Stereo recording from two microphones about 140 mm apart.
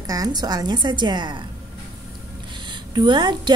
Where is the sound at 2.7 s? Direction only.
35° right (ahead or behind).